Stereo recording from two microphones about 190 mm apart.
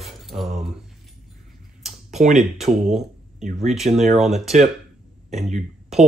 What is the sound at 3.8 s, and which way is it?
Speech, 35° right (ahead or behind).